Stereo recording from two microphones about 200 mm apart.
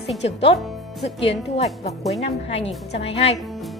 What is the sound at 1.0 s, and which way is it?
Speech, 60° left (ahead or behind).